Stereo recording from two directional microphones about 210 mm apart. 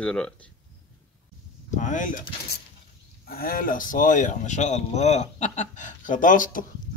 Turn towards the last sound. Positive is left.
turn(degrees=40)  # may be behind; listen again after turning